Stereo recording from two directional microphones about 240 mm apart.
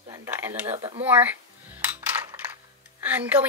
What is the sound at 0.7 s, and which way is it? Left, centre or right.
Speech, right.